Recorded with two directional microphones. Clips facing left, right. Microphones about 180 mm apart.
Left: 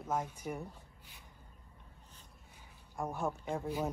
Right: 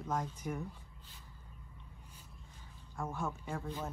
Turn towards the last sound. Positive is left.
turn(degrees=15)  # may be behind; listen again after turning